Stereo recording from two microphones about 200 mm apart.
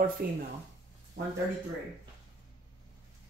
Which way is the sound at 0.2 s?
50° right (ahead or behind).